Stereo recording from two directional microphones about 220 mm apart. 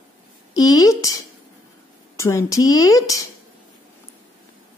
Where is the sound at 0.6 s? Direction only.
15° left (ahead or behind).